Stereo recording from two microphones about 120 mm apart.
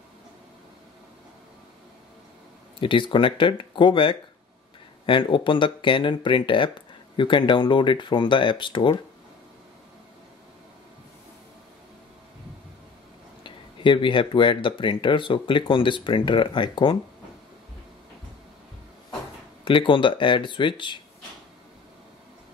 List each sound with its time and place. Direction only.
2.8 s speech: 45° left (ahead or behind)
13.4 s speech: 40° left (ahead or behind)
19.6 s speech: 45° left (ahead or behind)